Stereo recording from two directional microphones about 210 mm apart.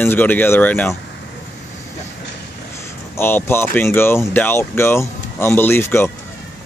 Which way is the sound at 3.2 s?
10° left (ahead or behind).